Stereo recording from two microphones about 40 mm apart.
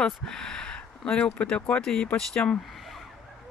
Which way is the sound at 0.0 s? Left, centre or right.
Centre.